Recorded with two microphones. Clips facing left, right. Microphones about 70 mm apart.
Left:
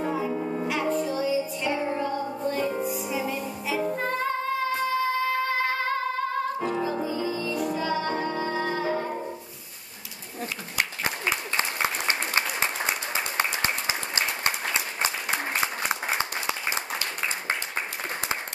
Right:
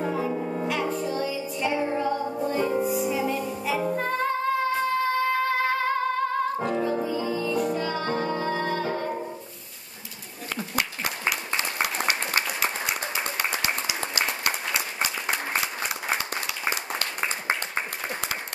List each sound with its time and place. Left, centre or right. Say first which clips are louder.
0.0 s music: even; centre
11.1 s applause: even; left
15.6 s clapping: left 3 dB; left
17.2 s applause: right 3 dB; right